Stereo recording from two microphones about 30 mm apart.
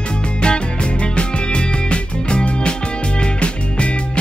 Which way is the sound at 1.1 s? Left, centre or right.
Left.